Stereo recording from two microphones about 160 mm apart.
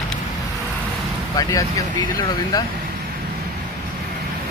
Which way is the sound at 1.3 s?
20° left (ahead or behind).